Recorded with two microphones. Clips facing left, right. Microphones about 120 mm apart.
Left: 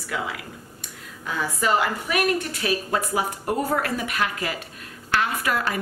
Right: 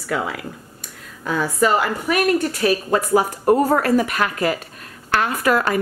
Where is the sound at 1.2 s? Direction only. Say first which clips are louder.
Right 6 dB; 45° right (ahead or behind).